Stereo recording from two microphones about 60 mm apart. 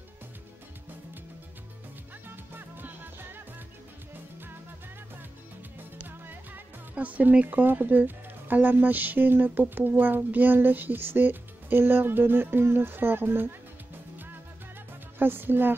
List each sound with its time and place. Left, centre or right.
2.2 s music: right
5.8 s speech: right
15.1 s speech: right